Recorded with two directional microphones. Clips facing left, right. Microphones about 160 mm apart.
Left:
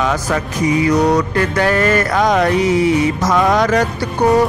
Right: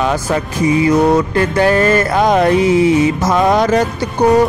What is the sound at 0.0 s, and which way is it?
Music, 30° right (ahead or behind).